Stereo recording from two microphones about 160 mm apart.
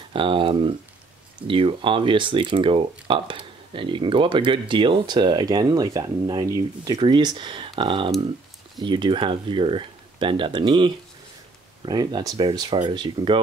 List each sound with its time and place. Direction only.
0.1 s speech: 30° right (ahead or behind)